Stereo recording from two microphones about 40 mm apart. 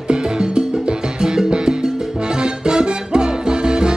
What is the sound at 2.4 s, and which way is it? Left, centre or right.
Salsa music, right.